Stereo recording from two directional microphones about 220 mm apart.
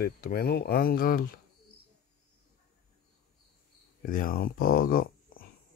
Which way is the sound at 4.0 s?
40° left (ahead or behind).